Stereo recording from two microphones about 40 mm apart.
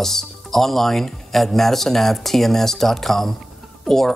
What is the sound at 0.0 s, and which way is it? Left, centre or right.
Speech, centre.